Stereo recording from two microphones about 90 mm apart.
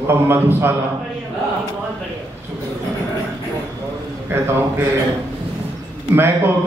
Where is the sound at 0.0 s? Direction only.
25° right (ahead or behind).